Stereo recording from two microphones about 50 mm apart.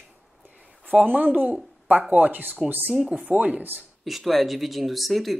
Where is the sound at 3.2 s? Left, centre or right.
Right.